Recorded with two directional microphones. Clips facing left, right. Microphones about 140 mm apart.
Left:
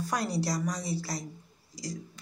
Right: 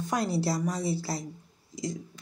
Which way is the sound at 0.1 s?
25° right (ahead or behind).